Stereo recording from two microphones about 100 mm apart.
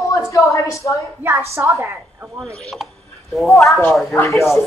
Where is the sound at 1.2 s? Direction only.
25° right (ahead or behind).